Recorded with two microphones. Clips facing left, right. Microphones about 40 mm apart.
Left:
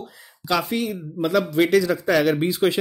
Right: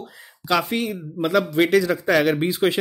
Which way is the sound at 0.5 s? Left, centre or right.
Right.